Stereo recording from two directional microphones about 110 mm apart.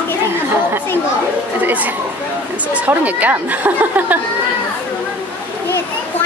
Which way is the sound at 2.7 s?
15° right (ahead or behind).